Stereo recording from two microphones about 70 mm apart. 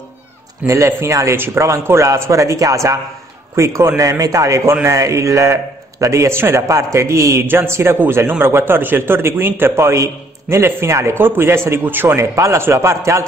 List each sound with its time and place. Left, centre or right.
0.7 s a man's voice: right
7.4 s a man's voice: right
12.2 s a man's voice: right